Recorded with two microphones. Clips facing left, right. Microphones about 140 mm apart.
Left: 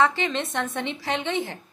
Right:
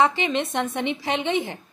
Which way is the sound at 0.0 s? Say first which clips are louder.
Right 2 dB; 15° right (ahead or behind).